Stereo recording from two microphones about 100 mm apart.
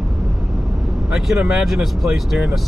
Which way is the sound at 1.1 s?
5° right (ahead or behind).